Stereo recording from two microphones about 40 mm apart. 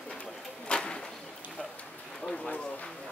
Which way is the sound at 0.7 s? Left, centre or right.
Left.